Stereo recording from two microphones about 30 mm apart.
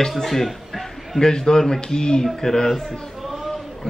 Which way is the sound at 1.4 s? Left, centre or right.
Centre.